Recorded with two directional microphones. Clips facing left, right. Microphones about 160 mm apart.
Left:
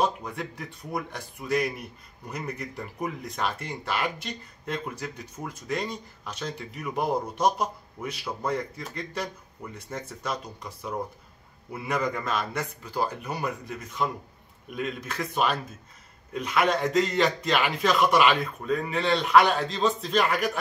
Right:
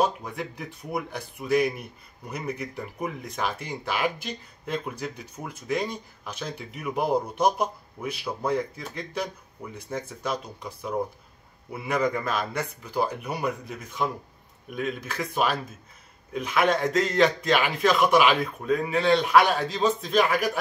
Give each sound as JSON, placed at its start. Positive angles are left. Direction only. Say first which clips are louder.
{"t": 0.0, "sound": "a man's voice", "louder": "right 1 dB", "side_deg": -5}